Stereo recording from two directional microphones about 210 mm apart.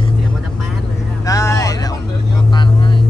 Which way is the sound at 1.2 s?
15° left (ahead or behind).